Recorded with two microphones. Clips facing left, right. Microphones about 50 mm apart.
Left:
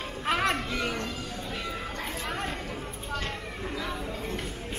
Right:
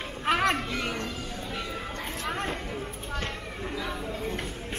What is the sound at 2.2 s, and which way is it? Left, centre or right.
Chatter, centre.